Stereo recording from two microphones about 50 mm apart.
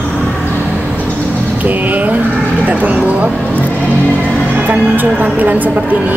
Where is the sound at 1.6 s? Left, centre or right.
Right.